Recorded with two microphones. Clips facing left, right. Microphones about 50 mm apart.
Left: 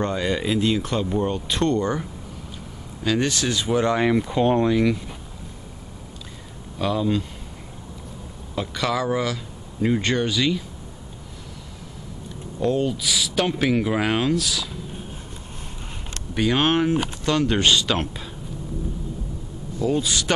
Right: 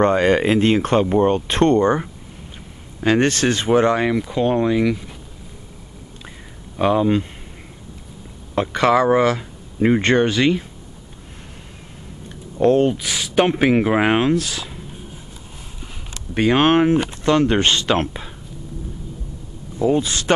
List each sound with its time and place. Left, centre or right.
0.0 s speech: right
3.3 s speech: right
4.1 s speech: centre
4.6 s speech: centre
6.8 s speech: right
8.5 s speech: right
12.5 s speech: right
16.3 s speech: right
19.8 s speech: right